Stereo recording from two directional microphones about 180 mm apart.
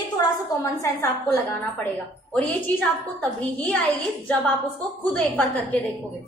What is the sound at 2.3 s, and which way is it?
A woman's voice, 5° left (ahead or behind).